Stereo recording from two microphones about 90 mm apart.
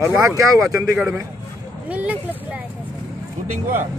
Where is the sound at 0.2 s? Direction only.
40° right (ahead or behind).